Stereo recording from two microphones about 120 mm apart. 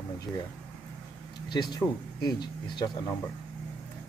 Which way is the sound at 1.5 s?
35° left (ahead or behind).